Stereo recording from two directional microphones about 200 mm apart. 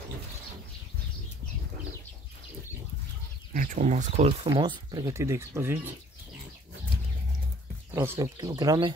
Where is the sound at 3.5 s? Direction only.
40° right (ahead or behind); by 5.9 s 10° right (ahead or behind).